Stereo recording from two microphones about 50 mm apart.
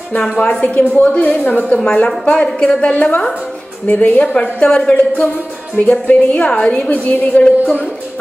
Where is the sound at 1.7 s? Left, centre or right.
Left.